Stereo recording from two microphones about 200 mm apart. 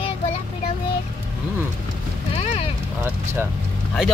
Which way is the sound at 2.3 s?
35° left (ahead or behind).